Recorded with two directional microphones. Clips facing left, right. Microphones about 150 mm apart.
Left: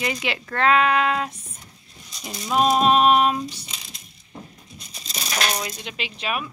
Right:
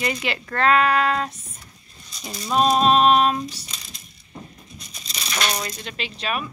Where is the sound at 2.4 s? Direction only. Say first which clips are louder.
Even; 5° left (ahead or behind).